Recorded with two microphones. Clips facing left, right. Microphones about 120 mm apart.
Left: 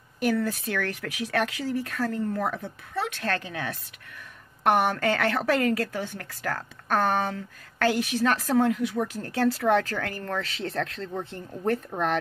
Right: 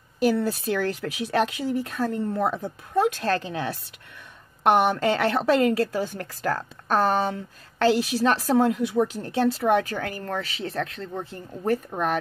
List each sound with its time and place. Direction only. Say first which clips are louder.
0.2 s speech: right 3 dB; 30° right (ahead or behind)
2.9 s speech: right 7 dB; 40° right (ahead or behind); by 5.9 s 25° right (ahead or behind)
5.9 s speech: right 5 dB; 35° right (ahead or behind)
6.9 s speech: right 2 dB; 25° right (ahead or behind); by 12.2 s 10° right (ahead or behind)